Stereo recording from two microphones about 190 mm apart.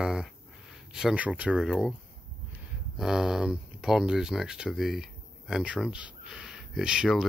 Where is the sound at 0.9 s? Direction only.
5° right (ahead or behind).